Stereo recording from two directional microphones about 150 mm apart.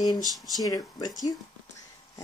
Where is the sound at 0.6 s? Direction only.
30° left (ahead or behind).